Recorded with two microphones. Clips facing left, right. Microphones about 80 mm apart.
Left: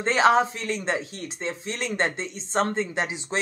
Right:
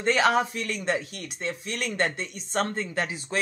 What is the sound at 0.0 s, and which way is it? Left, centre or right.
Speech, left.